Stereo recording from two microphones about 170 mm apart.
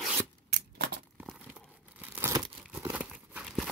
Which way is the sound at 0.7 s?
70° right (ahead or behind).